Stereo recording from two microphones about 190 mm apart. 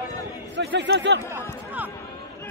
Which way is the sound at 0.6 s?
70° right (ahead or behind).